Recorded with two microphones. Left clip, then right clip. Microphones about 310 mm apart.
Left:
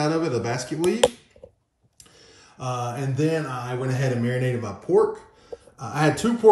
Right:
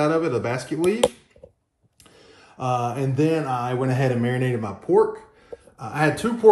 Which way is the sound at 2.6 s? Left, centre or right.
Centre.